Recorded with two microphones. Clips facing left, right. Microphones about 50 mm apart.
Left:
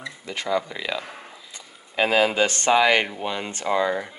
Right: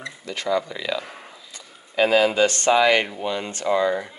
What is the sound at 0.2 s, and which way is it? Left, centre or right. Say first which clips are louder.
Speech: right 1 dB; left.